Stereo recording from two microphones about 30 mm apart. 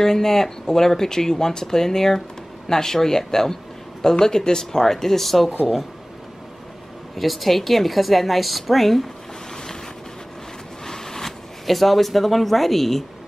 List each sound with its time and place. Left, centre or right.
0.0 s speech: centre
7.2 s a woman's voice: centre
10.9 s a sound: centre
11.6 s a woman's voice: centre